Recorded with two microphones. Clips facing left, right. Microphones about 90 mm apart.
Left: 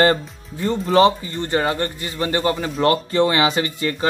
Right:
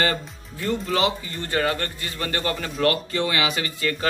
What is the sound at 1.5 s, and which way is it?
A man's voice, 25° left (ahead or behind).